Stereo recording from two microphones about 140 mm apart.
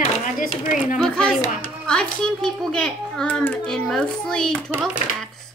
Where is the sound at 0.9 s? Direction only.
5° left (ahead or behind).